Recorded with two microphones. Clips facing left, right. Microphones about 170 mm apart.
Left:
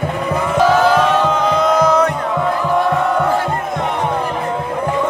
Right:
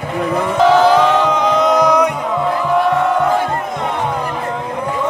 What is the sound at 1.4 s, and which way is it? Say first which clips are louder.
Crowd: right 1 dB; 20° right (ahead or behind).